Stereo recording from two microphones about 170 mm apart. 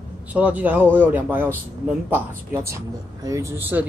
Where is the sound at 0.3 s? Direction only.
10° right (ahead or behind).